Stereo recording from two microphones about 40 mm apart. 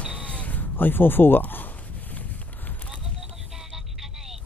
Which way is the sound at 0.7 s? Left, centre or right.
Left.